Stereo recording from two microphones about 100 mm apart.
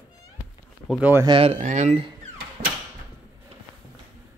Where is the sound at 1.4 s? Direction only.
80° right.